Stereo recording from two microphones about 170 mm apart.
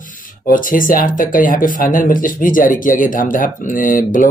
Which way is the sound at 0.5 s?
55° left (ahead or behind).